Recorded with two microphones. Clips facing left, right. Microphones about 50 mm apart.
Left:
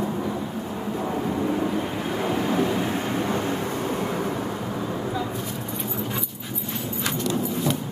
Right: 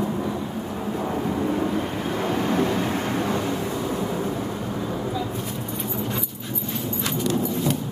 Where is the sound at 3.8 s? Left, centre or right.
Left.